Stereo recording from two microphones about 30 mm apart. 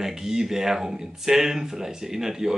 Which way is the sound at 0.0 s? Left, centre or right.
Centre.